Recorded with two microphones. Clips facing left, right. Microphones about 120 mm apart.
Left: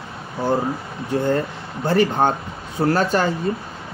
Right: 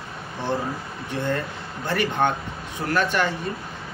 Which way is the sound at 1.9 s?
35° left (ahead or behind).